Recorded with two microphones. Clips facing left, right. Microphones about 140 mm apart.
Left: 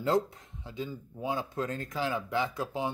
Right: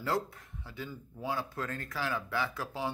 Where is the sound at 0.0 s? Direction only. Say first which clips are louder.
Left 5 dB; 20° left (ahead or behind).